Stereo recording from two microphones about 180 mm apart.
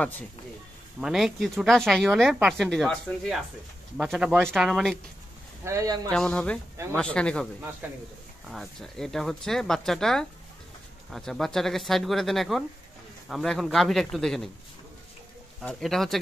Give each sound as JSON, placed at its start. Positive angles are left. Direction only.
{"t": 1.0, "sound": "speech", "side_deg": 0}
{"t": 5.6, "sound": "speech", "side_deg": -15}
{"t": 6.1, "sound": "speech", "side_deg": 5}
{"t": 7.8, "sound": "speech", "side_deg": -5}
{"t": 15.6, "sound": "speech", "side_deg": 0}